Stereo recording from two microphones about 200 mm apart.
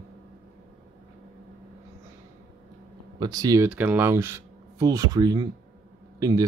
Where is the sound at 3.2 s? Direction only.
20° right (ahead or behind).